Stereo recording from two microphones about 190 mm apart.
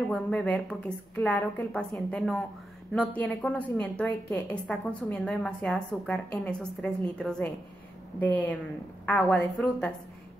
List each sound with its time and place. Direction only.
0.1 s a woman's voice: 5° left (ahead or behind)